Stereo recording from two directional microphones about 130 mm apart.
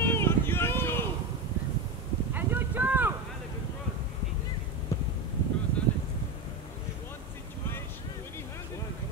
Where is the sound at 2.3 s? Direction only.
15° right (ahead or behind).